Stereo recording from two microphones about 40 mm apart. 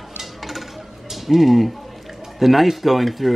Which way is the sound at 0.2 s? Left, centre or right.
Centre.